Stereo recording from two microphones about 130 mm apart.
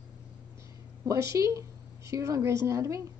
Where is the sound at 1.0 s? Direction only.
25° right (ahead or behind).